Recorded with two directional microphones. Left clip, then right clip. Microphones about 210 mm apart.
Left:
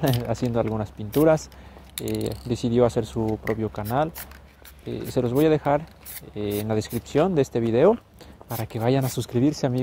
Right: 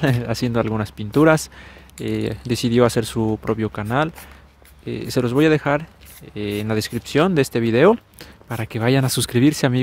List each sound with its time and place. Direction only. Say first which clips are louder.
0.0 s speech: right 3 dB; 30° right (ahead or behind)